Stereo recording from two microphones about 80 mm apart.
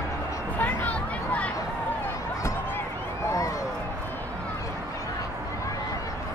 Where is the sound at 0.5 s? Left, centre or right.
Left.